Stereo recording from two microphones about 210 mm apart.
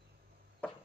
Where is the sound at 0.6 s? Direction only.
5° left (ahead or behind).